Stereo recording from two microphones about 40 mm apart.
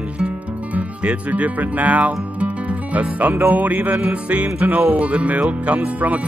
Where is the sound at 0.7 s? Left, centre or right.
Right.